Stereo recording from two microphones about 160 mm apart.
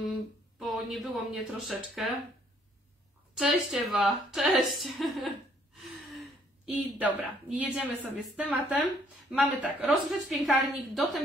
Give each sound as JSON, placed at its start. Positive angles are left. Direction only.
{"t": 0.1, "sound": "speech", "side_deg": 0}
{"t": 3.3, "sound": "a woman's voice", "side_deg": 0}
{"t": 6.7, "sound": "a woman's voice", "side_deg": -5}